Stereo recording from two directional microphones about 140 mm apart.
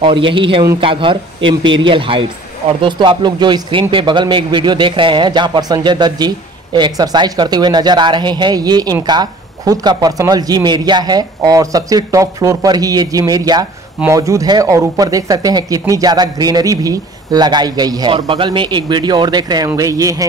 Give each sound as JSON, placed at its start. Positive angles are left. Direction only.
{"t": 0.0, "sound": "a man's voice", "side_deg": -35}